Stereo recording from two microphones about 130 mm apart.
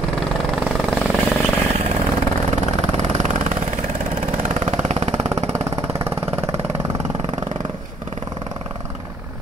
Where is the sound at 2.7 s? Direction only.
60° right (ahead or behind).